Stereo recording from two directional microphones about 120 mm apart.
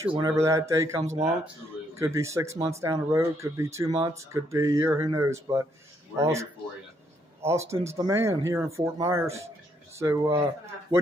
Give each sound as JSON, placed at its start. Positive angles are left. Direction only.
{"t": 0.0, "sound": "speech", "side_deg": -40}
{"t": 0.4, "sound": "speech", "side_deg": -25}
{"t": 7.4, "sound": "speech", "side_deg": -25}